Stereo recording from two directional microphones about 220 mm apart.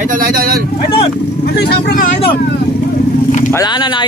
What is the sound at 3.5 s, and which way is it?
Speech, 20° left (ahead or behind).